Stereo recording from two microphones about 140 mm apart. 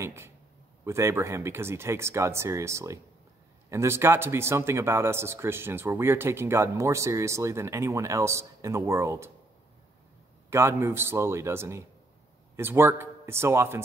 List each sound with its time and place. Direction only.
0.0 s speech: 20° right (ahead or behind)
10.5 s speech: 20° right (ahead or behind)